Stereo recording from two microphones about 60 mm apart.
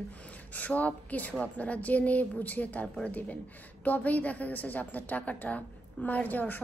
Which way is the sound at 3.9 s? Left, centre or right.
Left.